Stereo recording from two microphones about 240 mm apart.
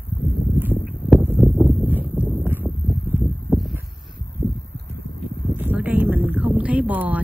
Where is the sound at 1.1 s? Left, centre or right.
Centre.